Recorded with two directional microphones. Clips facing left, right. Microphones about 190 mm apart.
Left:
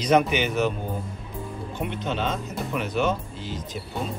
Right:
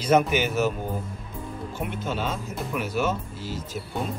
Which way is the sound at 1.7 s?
5° right (ahead or behind).